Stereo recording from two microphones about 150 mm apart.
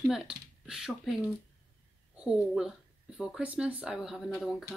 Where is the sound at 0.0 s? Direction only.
5° right (ahead or behind).